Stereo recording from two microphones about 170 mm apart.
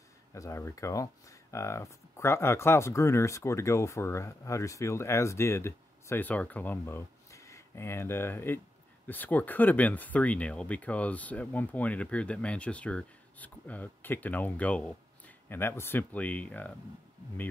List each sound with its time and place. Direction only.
0.3 s speech: 15° left (ahead or behind)